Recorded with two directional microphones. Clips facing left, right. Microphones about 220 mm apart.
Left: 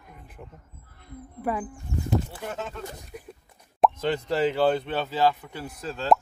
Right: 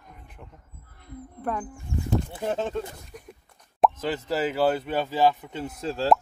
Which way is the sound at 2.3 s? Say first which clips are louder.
Right 7 dB; 30° right (ahead or behind).